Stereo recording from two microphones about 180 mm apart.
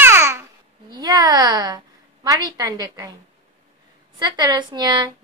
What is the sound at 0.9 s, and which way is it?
A woman's voice, 20° right (ahead or behind).